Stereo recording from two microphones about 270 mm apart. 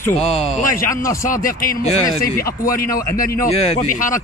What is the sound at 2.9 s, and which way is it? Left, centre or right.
Speech, centre.